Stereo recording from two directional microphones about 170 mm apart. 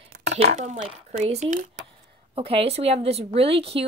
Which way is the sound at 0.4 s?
40° right (ahead or behind).